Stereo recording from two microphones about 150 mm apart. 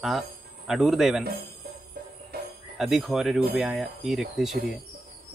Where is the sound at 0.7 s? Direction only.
Centre (ahead or behind).